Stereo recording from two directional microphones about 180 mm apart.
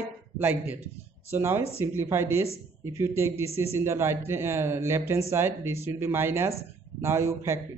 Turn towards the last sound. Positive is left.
turn(degrees=-15)  # may be behind; listen again after turning